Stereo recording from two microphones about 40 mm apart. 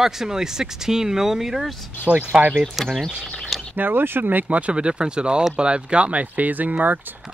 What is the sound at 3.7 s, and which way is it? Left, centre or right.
Speech, right.